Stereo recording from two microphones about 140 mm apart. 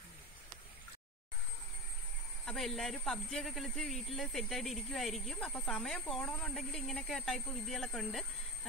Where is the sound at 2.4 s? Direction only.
Centre (ahead or behind).